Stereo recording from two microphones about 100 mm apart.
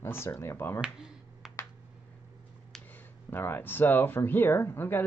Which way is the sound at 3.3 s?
20° left (ahead or behind).